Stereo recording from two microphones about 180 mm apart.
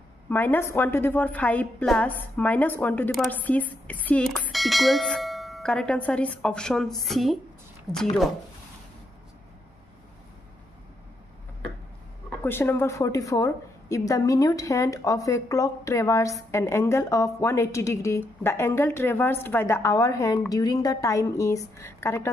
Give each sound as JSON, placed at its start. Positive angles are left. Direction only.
{"t": 0.3, "sound": "a woman's voice", "side_deg": 10}
{"t": 12.4, "sound": "a woman's voice", "side_deg": 10}